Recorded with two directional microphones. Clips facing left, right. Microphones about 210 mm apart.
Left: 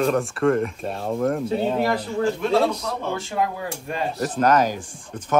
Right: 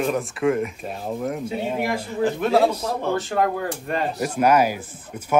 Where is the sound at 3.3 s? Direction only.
Centre (ahead or behind).